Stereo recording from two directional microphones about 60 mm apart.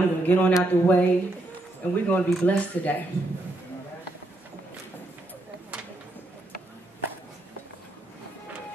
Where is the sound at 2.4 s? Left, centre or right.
Left.